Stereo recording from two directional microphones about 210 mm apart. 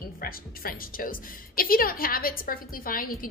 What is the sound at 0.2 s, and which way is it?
A woman's voice, 45° left (ahead or behind).